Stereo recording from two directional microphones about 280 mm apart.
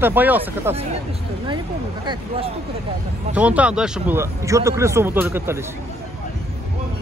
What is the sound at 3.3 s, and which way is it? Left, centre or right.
Speech, centre.